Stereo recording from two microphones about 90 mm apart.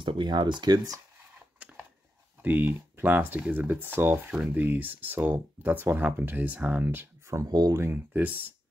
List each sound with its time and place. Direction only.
0.0 s speech: 70° right (ahead or behind)
1.6 s a sound: 15° right (ahead or behind)
2.4 s speech: 20° right (ahead or behind)
7.4 s speech: 45° right (ahead or behind)
7.7 s speech: 25° right (ahead or behind)